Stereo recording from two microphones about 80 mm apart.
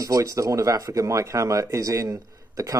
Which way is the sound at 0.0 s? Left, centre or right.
Right.